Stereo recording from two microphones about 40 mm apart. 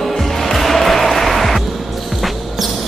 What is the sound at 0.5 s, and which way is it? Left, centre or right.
Music, centre.